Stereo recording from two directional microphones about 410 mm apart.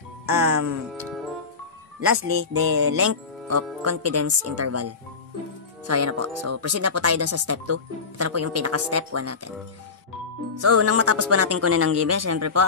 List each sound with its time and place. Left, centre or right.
0.3 s speech: right
2.0 s speech: right
10.5 s speech: right